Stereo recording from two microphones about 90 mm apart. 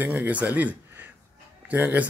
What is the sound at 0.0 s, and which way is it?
Speech, 20° right (ahead or behind).